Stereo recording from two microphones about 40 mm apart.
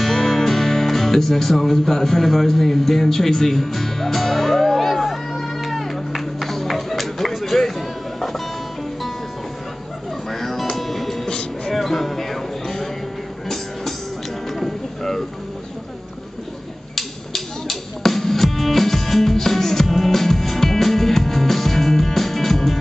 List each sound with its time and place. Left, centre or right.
0.0 s music: centre
10.3 s music: centre
11.2 s music: centre
11.7 s music: centre
14.5 s a sound: centre
16.9 s music: centre